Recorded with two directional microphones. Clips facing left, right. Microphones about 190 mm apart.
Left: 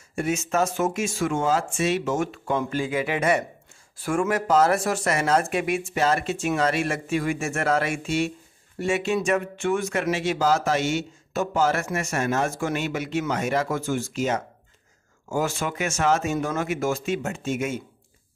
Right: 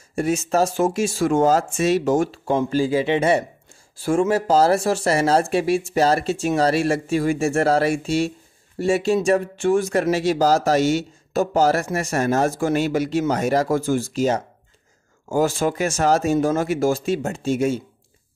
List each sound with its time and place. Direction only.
0.1 s speech: 35° right (ahead or behind)